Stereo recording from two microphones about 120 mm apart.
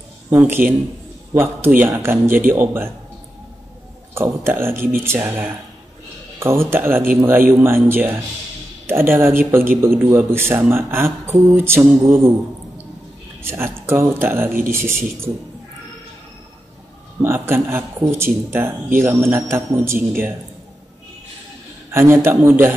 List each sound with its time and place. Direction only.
0.4 s a man's voice: 15° right (ahead or behind)
4.1 s a man's voice: 20° right (ahead or behind)
13.4 s a man's voice: 20° right (ahead or behind)
17.2 s a man's voice: 20° right (ahead or behind)
21.9 s a man's voice: 20° right (ahead or behind)